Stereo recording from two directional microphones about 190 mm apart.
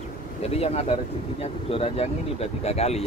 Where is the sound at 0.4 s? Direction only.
30° left (ahead or behind).